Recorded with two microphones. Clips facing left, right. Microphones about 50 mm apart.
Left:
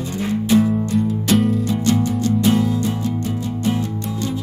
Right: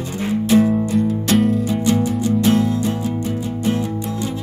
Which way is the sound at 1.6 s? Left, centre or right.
Centre.